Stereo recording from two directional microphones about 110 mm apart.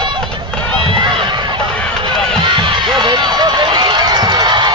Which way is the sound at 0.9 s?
50° right (ahead or behind).